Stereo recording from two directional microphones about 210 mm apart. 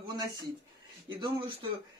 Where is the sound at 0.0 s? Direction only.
20° right (ahead or behind).